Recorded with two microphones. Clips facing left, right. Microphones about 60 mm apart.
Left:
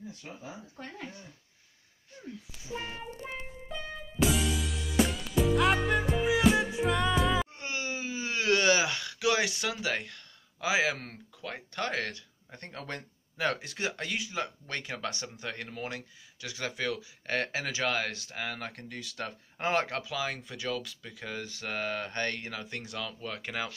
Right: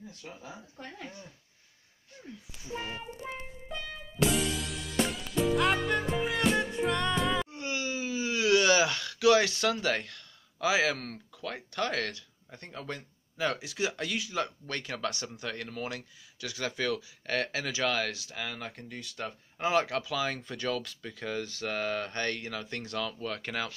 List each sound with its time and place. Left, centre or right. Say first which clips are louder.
4.2 s music: even; centre
7.5 s wail: right 2 dB; left; by 10.1 s centre
10.1 s speech: right 1 dB; left
12.5 s speech: even; left
19.0 s speech: even; left
19.6 s speech: right 2 dB; left
20.2 s speech: right 2 dB; centre